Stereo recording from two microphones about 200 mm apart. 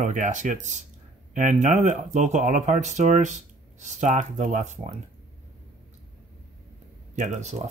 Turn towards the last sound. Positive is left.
turn(degrees=-35)  # may be behind; listen again after turning